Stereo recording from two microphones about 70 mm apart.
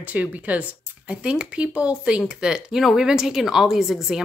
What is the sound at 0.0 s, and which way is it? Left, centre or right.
Speech, right.